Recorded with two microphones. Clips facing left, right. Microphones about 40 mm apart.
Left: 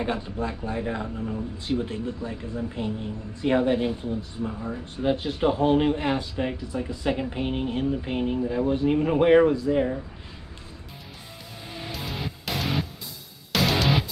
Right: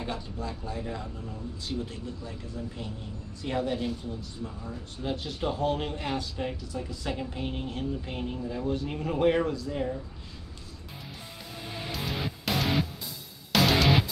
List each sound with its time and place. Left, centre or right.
0.0 s speech: left
11.9 s music: centre